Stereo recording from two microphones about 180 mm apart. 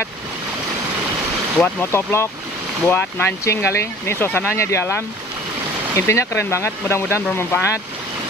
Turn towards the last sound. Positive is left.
turn(degrees=15)  # may be behind; listen again after turning